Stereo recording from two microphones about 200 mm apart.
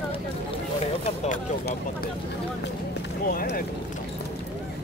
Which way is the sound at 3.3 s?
45° left (ahead or behind).